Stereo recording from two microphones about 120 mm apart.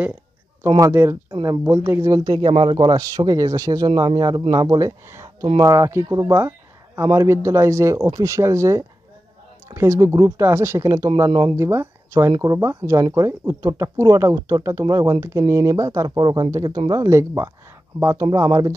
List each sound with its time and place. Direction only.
0.7 s speech: 25° right (ahead or behind); by 3.0 s 40° right (ahead or behind)
3.0 s speech: 30° right (ahead or behind)
16.2 s speech: 40° right (ahead or behind)